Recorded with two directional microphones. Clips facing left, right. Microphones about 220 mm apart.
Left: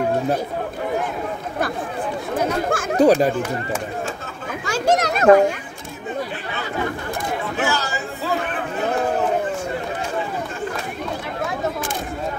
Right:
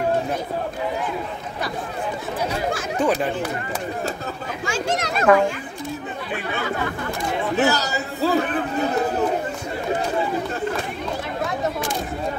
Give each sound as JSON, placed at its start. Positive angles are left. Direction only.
{"t": 2.3, "sound": "speech", "side_deg": 50}
{"t": 4.6, "sound": "a sound", "side_deg": 40}
{"t": 7.6, "sound": "a man's voice", "side_deg": -40}